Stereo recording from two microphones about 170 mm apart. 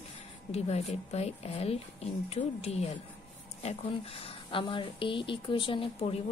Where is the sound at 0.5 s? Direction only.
40° left (ahead or behind).